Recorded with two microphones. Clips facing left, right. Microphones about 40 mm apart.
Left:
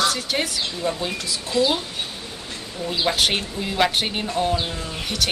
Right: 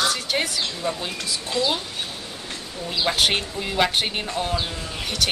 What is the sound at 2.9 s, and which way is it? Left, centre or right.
Speech, centre.